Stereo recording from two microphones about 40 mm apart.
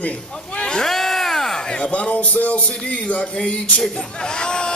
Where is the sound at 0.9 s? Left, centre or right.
Centre.